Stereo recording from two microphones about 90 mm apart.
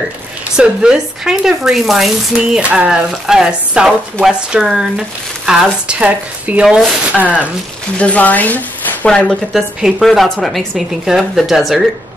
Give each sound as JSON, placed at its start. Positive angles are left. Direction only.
{"t": 0.6, "sound": "speech", "side_deg": -5}
{"t": 6.6, "sound": "speech", "side_deg": -5}
{"t": 8.0, "sound": "speech", "side_deg": 15}
{"t": 9.5, "sound": "speech", "side_deg": -5}